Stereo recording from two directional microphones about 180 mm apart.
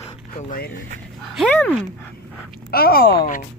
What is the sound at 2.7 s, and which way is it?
Speech, 60° left (ahead or behind).